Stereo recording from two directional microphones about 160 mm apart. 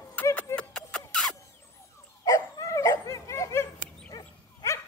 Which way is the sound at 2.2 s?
20° left (ahead or behind).